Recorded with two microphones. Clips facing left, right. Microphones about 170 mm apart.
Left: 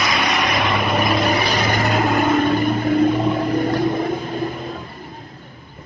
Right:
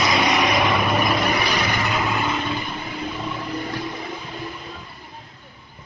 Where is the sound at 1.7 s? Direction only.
45° left (ahead or behind).